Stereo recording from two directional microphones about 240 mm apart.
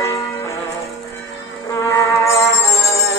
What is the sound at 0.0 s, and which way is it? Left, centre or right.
Church bell, centre.